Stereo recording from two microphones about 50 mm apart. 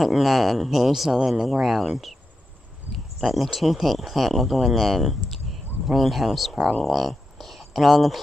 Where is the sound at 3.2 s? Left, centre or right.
Centre.